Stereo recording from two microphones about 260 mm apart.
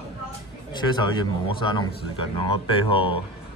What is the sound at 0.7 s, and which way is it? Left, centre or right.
A man's voice, centre.